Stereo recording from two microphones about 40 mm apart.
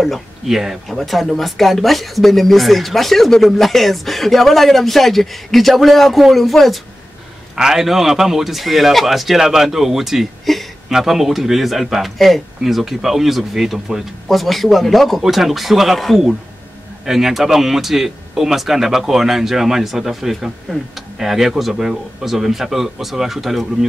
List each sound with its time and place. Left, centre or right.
0.0 s speech: centre
7.5 s speech: centre
10.5 s speech: centre
10.9 s speech: centre
14.2 s speech: centre